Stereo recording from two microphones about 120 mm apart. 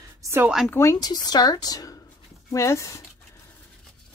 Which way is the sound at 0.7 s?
25° left (ahead or behind).